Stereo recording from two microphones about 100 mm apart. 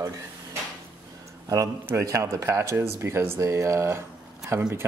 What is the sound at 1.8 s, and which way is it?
Speech, 30° right (ahead or behind).